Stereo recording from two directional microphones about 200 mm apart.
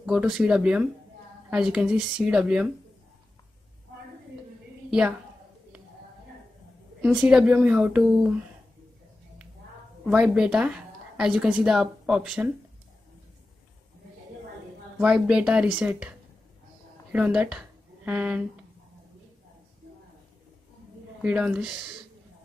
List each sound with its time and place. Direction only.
0.0 s speech: 5° right (ahead or behind)
7.0 s speech: 5° right (ahead or behind)
10.0 s a woman's voice: 5° right (ahead or behind)
15.0 s speech: 5° right (ahead or behind)
17.1 s speech: 5° right (ahead or behind)
21.2 s speech: 5° right (ahead or behind)